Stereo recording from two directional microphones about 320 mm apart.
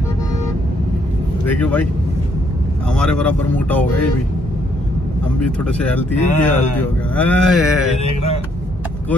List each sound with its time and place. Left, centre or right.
1.4 s speech: centre
2.9 s speech: centre
5.4 s speech: centre
8.1 s speech: centre